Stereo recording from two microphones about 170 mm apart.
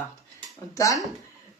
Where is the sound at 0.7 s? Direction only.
20° left (ahead or behind).